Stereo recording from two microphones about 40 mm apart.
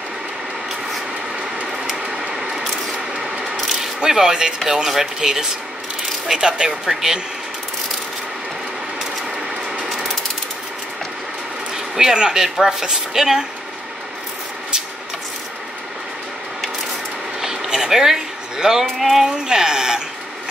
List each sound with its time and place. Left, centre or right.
3.8 s a woman's voice: centre
11.7 s a woman's voice: centre
17.4 s a sound: centre
19.3 s speech: centre